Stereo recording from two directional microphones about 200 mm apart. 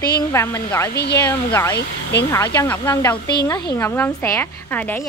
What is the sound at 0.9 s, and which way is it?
Speech, 55° left (ahead or behind).